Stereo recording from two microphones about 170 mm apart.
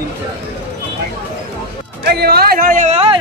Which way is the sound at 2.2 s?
65° right (ahead or behind).